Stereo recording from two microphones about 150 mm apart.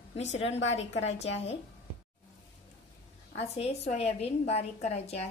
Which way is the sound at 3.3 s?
45° left (ahead or behind).